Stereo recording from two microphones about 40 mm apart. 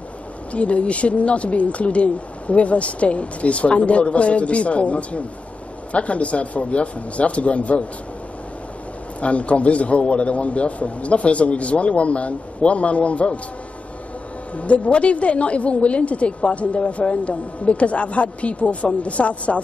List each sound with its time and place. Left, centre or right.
0.5 s a woman's voice: left
9.2 s a woman's voice: left
14.5 s a woman's voice: left